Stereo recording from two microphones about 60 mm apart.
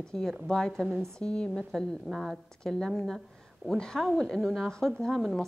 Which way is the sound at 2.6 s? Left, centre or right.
Centre.